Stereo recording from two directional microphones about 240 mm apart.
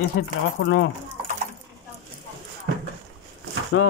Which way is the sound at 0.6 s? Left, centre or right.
Left.